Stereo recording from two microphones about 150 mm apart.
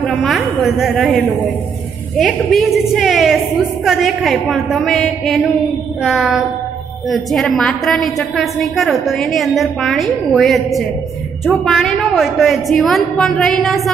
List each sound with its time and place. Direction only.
0.0 s a woman's voice: centre (ahead or behind)